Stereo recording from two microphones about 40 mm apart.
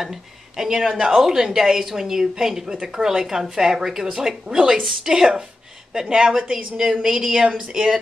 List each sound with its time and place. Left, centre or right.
0.0 s a woman's voice: centre
7.4 s speech: right
7.7 s a woman's voice: centre